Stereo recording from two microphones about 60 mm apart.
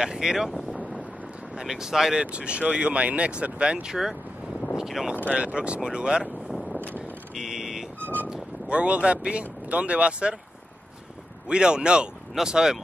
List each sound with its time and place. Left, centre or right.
0.0 s speech: centre
1.6 s speech: centre
2.3 s speech: centre
5.3 s speech: centre
7.3 s vehicle: centre
8.0 s vehicle: left
8.3 s speech: centre
11.4 s speech: centre